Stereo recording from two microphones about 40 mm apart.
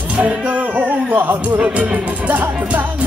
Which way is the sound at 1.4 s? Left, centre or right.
Right.